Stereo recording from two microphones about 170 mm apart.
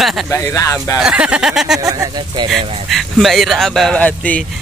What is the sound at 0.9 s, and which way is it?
Speech, 5° right (ahead or behind).